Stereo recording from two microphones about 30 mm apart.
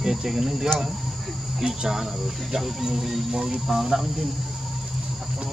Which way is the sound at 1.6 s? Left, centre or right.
Right.